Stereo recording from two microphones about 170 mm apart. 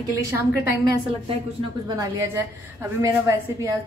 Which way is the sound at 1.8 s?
20° right (ahead or behind).